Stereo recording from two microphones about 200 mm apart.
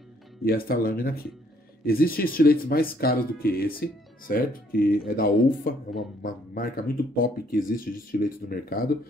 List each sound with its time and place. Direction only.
0.4 s speech: 50° left (ahead or behind)